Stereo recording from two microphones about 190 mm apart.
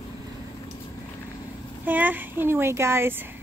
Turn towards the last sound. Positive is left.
turn(degrees=-10)  # may be behind; listen again after turning